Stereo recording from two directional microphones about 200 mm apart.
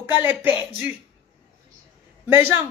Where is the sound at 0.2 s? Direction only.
10° right (ahead or behind).